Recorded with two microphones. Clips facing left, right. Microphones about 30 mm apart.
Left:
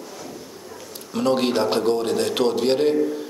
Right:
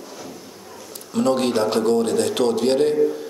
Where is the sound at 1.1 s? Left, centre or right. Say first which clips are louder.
Right 1 dB; centre.